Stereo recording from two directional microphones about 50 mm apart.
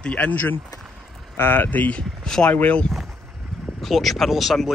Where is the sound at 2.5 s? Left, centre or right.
Left.